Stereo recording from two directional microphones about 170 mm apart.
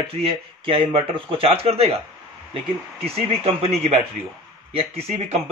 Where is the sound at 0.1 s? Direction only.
35° right (ahead or behind).